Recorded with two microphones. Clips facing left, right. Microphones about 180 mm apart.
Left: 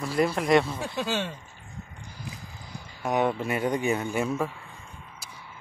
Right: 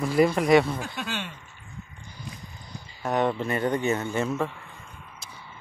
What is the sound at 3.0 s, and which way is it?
Speech, 10° left (ahead or behind).